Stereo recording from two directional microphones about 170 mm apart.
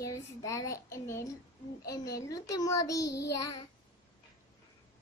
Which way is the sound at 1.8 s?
65° left (ahead or behind).